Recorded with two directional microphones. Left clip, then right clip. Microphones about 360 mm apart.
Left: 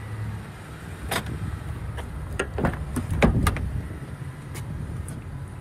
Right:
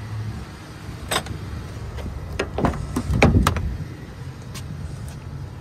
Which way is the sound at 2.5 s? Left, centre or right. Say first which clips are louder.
Right 4 dB; centre.